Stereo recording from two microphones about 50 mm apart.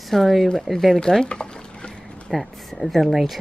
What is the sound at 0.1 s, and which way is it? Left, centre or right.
Speech, centre.